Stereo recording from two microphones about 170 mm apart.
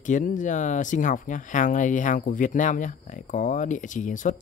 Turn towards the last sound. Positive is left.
turn(degrees=50)  # may be behind; listen again after turning